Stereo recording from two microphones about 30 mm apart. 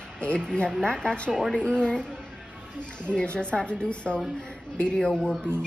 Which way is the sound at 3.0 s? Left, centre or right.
Left.